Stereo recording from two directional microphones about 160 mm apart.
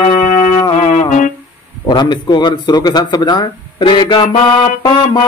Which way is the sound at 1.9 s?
25° left (ahead or behind).